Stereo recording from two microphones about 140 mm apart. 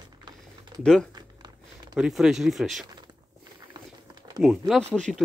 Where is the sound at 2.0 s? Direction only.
5° right (ahead or behind).